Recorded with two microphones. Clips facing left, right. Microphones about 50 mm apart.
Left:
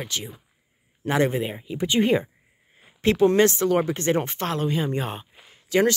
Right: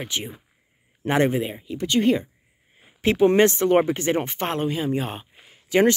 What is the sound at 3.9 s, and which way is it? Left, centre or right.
Speech, centre.